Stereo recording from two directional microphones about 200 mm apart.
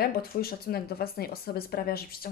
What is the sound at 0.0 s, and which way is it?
Speech, 50° left (ahead or behind).